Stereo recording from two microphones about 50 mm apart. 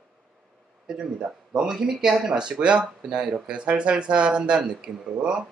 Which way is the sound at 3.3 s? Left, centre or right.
Right.